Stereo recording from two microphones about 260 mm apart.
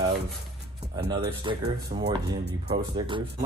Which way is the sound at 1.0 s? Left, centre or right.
Right.